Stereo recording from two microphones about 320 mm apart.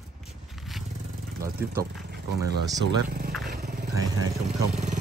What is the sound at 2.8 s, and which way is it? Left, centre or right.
Speech, right.